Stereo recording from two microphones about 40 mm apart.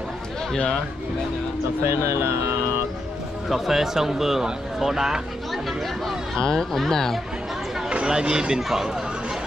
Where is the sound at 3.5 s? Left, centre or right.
Centre.